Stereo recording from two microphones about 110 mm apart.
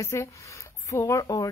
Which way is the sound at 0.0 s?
25° left (ahead or behind).